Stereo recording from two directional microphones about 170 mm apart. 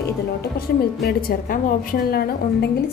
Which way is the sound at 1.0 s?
65° left (ahead or behind).